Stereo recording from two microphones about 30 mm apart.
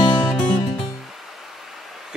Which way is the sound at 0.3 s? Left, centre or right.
Left.